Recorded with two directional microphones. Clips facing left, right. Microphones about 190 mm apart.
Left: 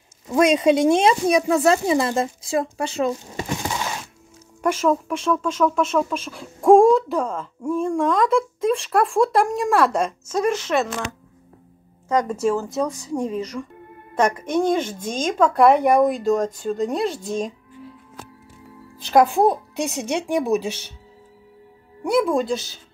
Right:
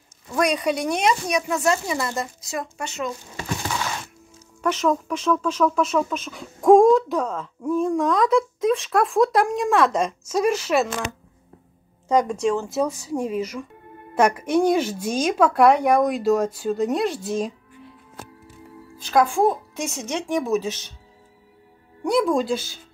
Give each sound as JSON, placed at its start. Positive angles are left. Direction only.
{"t": 0.3, "sound": "speech", "side_deg": 25}
{"t": 4.6, "sound": "speech", "side_deg": 5}
{"t": 10.2, "sound": "speech", "side_deg": -5}
{"t": 12.3, "sound": "speech", "side_deg": 5}
{"t": 19.3, "sound": "speech", "side_deg": 15}
{"t": 22.0, "sound": "speech", "side_deg": 0}